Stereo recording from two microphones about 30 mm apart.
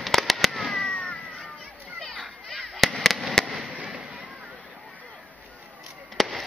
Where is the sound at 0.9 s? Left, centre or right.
Left.